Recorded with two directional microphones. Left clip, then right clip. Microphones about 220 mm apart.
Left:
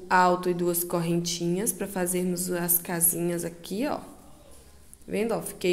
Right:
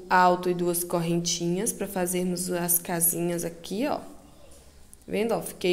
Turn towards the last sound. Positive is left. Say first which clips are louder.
# right 1 dB
turn(degrees=-5)  # may be behind; listen again after turning